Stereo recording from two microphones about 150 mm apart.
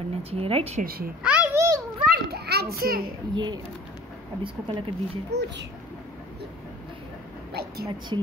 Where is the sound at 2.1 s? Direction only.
90° right.